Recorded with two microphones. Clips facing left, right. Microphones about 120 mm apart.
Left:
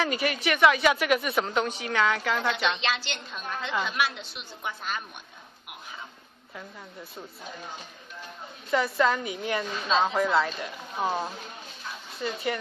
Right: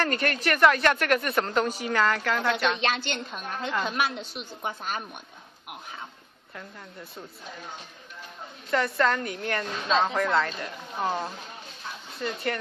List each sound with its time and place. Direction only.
0.0 s speech: 5° left (ahead or behind)
2.8 s a woman's voice: 50° right (ahead or behind)
6.5 s speech: centre (ahead or behind)
8.6 s speech: 5° left (ahead or behind)